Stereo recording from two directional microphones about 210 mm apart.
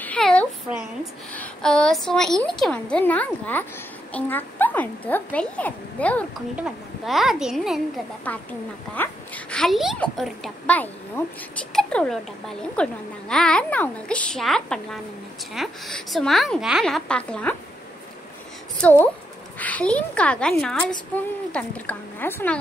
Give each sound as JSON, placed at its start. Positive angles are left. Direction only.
{"t": 0.0, "sound": "a sound", "side_deg": 5}
{"t": 1.3, "sound": "a child's voice", "side_deg": 5}
{"t": 18.8, "sound": "a child's voice", "side_deg": 5}